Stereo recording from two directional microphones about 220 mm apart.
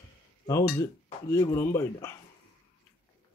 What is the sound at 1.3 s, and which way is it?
Speech, 10° left (ahead or behind).